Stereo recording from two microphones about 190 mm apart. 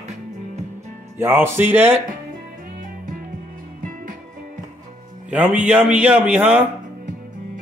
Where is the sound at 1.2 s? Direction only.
10° right (ahead or behind).